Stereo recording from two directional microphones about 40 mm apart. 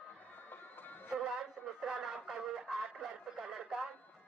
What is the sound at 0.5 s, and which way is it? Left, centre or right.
Music, left.